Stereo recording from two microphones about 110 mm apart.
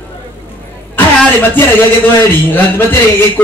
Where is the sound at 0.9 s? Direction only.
20° left (ahead or behind).